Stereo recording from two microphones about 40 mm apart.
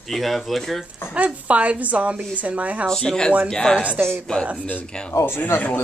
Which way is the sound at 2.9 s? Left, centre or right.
Centre.